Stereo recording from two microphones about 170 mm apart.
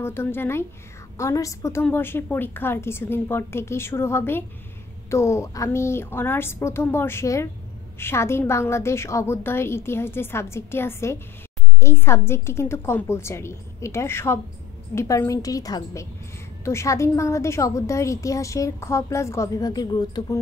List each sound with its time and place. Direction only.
0.0 s a woman's voice: 15° left (ahead or behind)